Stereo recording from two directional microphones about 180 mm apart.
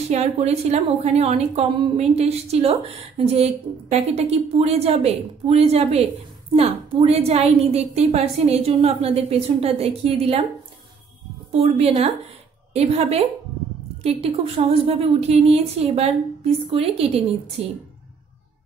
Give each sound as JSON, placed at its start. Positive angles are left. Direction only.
{"t": 0.1, "sound": "a woman's voice", "side_deg": -35}
{"t": 11.5, "sound": "a woman's voice", "side_deg": -35}